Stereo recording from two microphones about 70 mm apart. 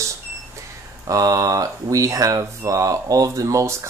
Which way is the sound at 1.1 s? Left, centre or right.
Right.